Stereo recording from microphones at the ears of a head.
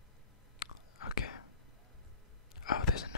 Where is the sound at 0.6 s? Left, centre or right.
Left.